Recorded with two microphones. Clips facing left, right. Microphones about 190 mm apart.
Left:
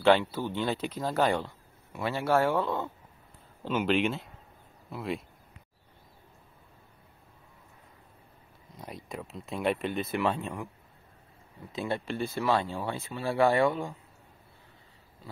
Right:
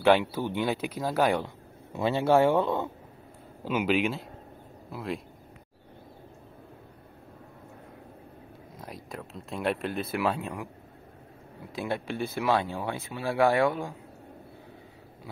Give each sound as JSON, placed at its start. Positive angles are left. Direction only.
{"t": 0.0, "sound": "speech", "side_deg": -15}
{"t": 1.9, "sound": "speech", "side_deg": -25}
{"t": 3.6, "sound": "speech", "side_deg": -10}
{"t": 8.7, "sound": "speech", "side_deg": 0}
{"t": 11.7, "sound": "speech", "side_deg": -15}